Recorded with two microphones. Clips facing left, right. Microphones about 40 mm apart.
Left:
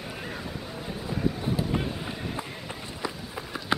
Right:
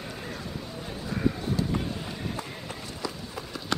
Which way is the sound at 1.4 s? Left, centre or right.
Centre.